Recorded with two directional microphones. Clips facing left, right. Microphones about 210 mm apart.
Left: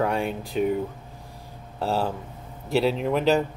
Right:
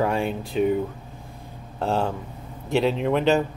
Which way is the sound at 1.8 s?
5° left (ahead or behind).